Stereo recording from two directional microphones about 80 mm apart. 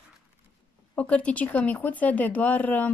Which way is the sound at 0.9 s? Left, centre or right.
Centre.